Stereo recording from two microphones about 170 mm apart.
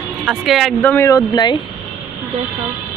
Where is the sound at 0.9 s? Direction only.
20° left (ahead or behind).